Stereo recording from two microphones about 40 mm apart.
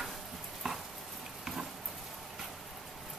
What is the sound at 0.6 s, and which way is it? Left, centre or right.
Frying, centre.